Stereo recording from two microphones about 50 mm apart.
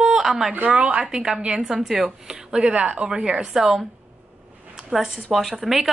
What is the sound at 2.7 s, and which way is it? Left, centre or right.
Speech, right.